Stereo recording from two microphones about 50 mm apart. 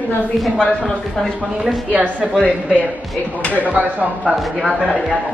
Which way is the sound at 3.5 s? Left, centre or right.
Right.